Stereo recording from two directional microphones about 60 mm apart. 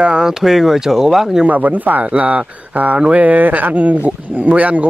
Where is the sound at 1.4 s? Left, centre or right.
Right.